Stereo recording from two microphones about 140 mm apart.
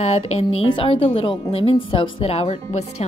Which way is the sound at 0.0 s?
45° left (ahead or behind).